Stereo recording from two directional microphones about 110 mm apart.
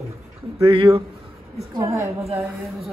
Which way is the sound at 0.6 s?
55° right (ahead or behind).